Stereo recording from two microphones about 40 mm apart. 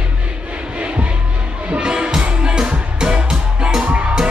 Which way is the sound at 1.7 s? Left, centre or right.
Right.